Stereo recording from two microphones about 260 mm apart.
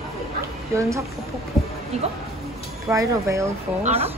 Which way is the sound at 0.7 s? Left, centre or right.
Centre.